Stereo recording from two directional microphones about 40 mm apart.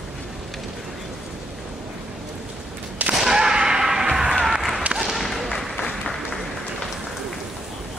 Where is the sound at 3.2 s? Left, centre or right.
Centre.